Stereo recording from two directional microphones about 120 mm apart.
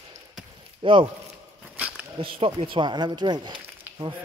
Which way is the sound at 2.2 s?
50° right (ahead or behind).